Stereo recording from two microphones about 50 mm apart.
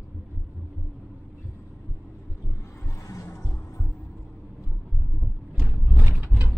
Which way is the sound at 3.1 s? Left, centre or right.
Left.